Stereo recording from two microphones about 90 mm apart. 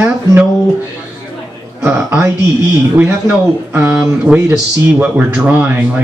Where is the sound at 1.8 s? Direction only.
20° right (ahead or behind).